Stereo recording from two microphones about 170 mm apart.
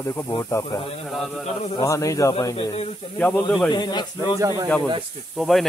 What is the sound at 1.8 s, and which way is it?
Speech, 20° left (ahead or behind).